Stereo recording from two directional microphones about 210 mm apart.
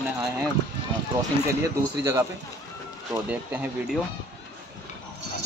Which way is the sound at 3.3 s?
5° right (ahead or behind).